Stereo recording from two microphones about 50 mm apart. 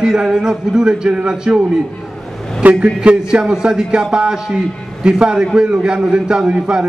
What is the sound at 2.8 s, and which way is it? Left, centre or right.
A man's voice, right.